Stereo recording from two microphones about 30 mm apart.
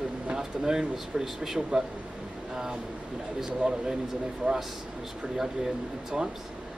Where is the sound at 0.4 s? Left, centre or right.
Centre.